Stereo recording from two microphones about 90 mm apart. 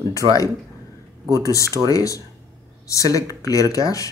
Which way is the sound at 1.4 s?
35° left (ahead or behind).